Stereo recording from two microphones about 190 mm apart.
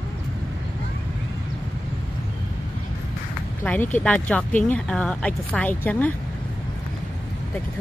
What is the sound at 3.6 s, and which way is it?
A woman's voice, 10° left (ahead or behind).